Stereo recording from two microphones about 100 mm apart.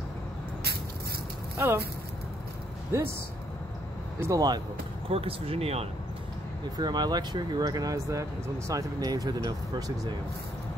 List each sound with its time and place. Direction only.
1.6 s speech: 25° right (ahead or behind)
4.2 s speech: 35° right (ahead or behind)
5.1 s speech: 75° right (ahead or behind)
6.8 s speech: 45° right (ahead or behind)